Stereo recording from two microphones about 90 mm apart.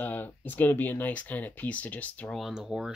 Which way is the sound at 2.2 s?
5° left (ahead or behind).